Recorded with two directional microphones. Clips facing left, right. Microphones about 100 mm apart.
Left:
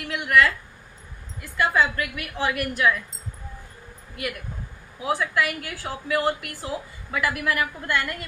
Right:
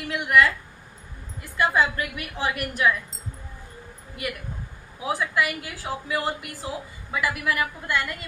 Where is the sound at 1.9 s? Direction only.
30° right (ahead or behind).